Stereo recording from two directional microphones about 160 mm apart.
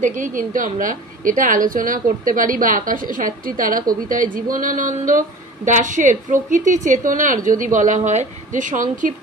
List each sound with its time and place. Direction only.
0.0 s a woman's voice: 55° right (ahead or behind)